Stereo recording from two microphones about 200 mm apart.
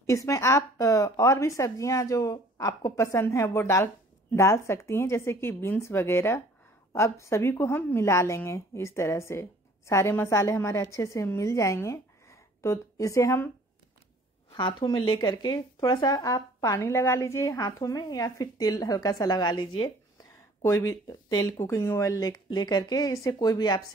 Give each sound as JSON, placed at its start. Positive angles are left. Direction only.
{"t": 0.0, "sound": "a woman's voice", "side_deg": 15}
{"t": 14.5, "sound": "a woman's voice", "side_deg": 25}